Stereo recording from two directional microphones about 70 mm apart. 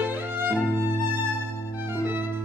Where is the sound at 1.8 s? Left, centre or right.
Right.